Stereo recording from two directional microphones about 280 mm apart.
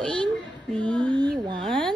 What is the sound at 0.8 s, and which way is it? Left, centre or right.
Speech, centre.